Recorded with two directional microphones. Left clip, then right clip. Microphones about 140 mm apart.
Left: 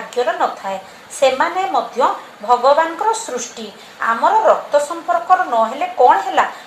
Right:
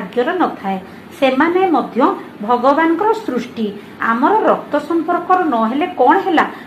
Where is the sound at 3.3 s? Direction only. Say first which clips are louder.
Right 4 dB; 20° right (ahead or behind).